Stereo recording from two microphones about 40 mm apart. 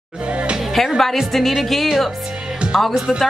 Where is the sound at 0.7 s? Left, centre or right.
Centre.